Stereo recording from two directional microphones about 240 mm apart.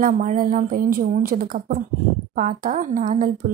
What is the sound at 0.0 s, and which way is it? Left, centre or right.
A woman's voice, right.